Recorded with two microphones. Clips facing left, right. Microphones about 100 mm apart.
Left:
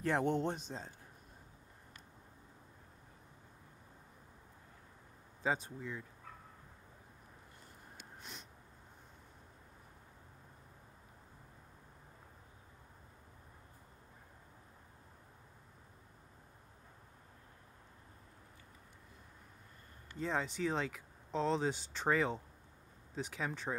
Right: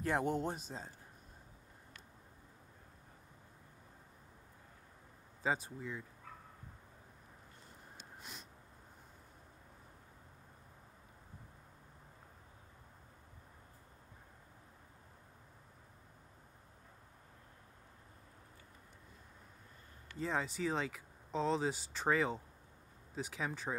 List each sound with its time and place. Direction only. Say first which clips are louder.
0.0 s speech: left 2 dB; 10° right (ahead or behind)
5.4 s speech: even; 5° right (ahead or behind)
8.2 s a sound: even; 5° right (ahead or behind)
20.2 s speech: left 1 dB; centre (ahead or behind)